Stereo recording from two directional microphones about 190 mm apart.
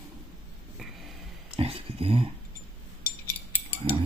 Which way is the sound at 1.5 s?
30° right (ahead or behind).